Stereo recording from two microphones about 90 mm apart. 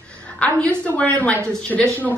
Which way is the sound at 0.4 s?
15° left (ahead or behind).